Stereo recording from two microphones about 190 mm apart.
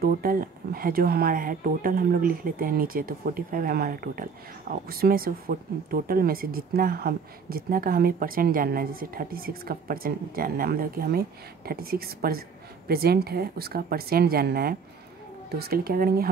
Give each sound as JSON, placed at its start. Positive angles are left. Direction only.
{"t": 0.0, "sound": "speech", "side_deg": -50}